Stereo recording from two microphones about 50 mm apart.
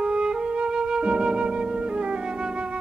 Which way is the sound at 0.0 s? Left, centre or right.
Centre.